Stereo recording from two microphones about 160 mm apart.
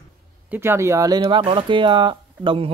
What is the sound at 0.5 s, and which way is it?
Speech, 15° right (ahead or behind).